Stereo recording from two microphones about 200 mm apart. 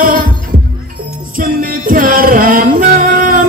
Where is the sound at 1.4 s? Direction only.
45° right (ahead or behind).